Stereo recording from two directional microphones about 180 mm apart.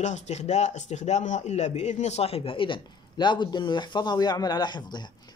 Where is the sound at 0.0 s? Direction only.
40° left (ahead or behind).